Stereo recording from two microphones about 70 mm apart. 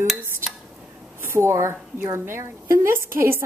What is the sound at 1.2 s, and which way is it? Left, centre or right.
A woman's voice, right.